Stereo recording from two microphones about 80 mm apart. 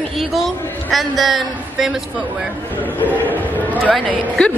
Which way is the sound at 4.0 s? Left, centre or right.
Centre.